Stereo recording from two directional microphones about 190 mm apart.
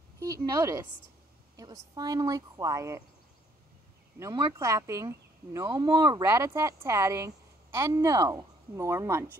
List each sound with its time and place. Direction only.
0.2 s a woman's voice: 20° right (ahead or behind)
4.2 s speech: 20° right (ahead or behind)